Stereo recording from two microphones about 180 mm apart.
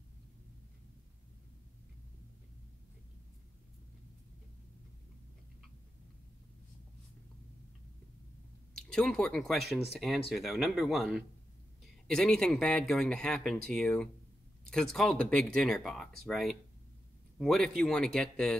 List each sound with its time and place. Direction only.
8.7 s speech: 5° left (ahead or behind)